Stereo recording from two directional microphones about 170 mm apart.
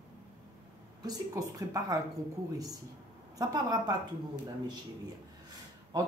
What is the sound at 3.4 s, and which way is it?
Speech, 25° right (ahead or behind).